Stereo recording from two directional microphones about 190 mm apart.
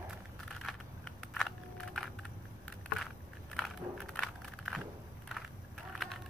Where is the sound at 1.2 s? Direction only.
5° left (ahead or behind).